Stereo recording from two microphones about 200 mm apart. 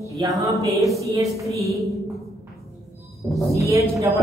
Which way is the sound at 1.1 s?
15° right (ahead or behind).